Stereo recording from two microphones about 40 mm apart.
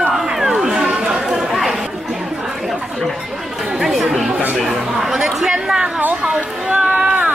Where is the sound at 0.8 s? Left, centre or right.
Right.